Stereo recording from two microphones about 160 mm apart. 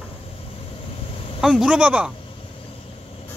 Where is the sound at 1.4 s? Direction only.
5° right (ahead or behind).